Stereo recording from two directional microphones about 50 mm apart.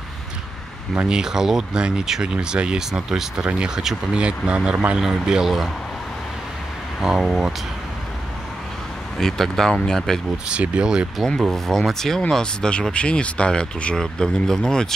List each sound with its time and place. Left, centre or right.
1.0 s speech: centre
7.0 s speech: centre
9.2 s speech: centre
10.5 s speech: right
11.5 s speech: centre